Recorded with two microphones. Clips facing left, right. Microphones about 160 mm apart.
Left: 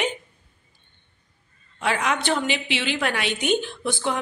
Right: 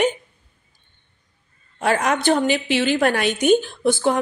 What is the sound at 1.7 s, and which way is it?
A woman's voice, 45° right (ahead or behind).